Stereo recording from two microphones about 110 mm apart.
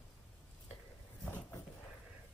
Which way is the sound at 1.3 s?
20° left (ahead or behind).